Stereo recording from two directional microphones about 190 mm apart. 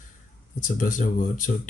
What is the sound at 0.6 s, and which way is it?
Speech, 45° left (ahead or behind).